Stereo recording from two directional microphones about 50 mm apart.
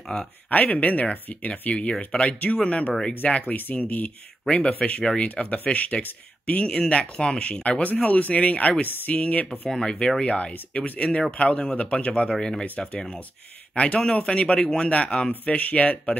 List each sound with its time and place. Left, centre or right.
0.1 s speech: left
3.5 s speech: left
4.5 s speech: left
9.7 s speech: centre
13.7 s speech: left